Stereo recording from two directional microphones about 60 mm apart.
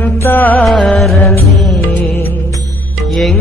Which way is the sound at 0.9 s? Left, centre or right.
Centre.